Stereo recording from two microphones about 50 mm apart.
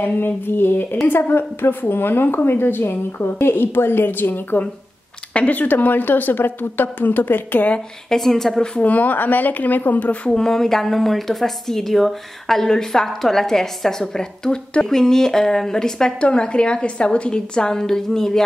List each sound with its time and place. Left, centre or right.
0.0 s a woman's voice: left
5.3 s speech: left
8.1 s a woman's voice: centre
8.7 s speech: left
10.3 s a woman's voice: centre